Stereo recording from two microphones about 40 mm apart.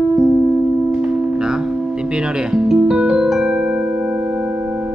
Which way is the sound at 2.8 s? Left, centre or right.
Centre.